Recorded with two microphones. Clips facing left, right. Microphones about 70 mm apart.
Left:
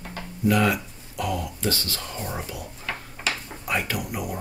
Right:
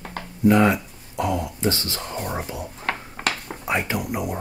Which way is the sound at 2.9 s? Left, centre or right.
Right.